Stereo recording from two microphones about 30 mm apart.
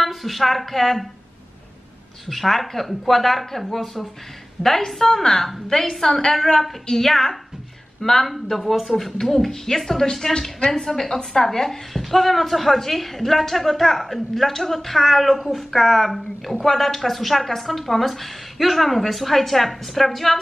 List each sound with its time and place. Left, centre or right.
0.0 s a woman's voice: centre
2.2 s a woman's voice: centre
4.6 s a woman's voice: centre